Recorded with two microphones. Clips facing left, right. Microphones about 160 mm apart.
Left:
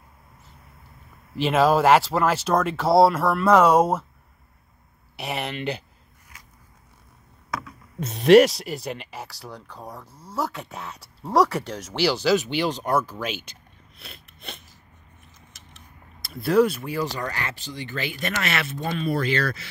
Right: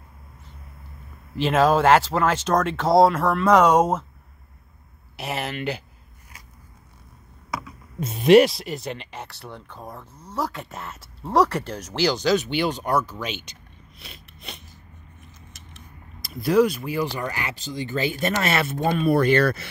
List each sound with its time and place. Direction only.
1.3 s speech: centre (ahead or behind)
5.1 s speech: centre (ahead or behind)
7.5 s speech: centre (ahead or behind)
16.2 s speech: centre (ahead or behind)
17.0 s speech: 10° right (ahead or behind)
17.6 s speech: 20° right (ahead or behind)
18.1 s speech: 35° right (ahead or behind); by 19.7 s 55° right (ahead or behind)